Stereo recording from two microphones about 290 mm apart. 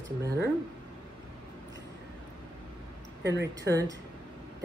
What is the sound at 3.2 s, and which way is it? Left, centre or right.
Speech, right.